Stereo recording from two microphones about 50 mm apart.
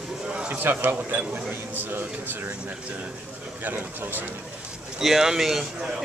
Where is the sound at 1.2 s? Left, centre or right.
Right.